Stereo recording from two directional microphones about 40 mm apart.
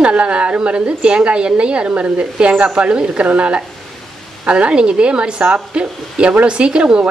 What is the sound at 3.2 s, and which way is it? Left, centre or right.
Speech, right.